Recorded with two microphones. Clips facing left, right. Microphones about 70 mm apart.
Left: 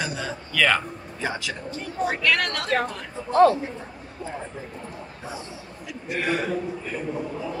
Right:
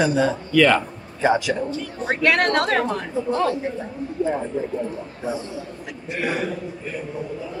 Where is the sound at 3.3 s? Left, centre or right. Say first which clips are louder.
Left 6 dB; left.